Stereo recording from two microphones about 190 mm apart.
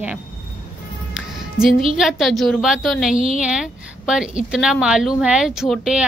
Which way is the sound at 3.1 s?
30° right (ahead or behind).